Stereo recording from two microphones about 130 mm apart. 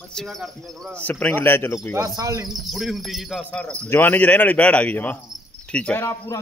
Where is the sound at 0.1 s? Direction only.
Centre (ahead or behind).